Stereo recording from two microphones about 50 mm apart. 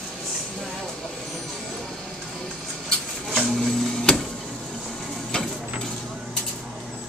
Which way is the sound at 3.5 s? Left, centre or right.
Centre.